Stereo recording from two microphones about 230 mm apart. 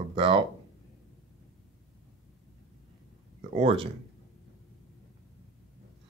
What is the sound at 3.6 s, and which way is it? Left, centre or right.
Speech, right.